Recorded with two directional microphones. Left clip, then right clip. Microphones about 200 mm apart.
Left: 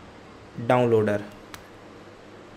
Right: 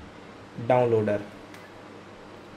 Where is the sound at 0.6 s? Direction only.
25° left (ahead or behind).